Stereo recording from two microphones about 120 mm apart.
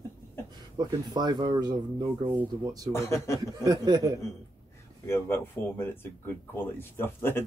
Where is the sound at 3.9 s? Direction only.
25° right (ahead or behind).